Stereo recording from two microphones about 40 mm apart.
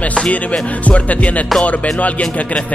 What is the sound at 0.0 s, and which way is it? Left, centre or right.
Music, left.